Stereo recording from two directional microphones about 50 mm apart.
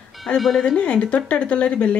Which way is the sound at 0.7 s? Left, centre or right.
Left.